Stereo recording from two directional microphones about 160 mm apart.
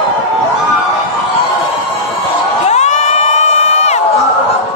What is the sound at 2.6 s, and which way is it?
Crowd, 45° left (ahead or behind).